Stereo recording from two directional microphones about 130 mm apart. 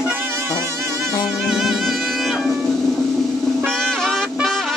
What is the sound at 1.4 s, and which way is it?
Music, centre (ahead or behind).